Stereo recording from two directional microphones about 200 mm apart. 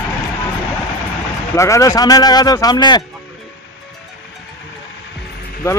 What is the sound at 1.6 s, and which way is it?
Speech, 15° left (ahead or behind).